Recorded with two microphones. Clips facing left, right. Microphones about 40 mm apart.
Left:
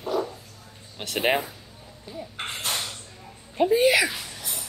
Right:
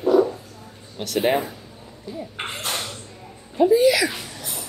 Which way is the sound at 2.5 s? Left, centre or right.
Centre.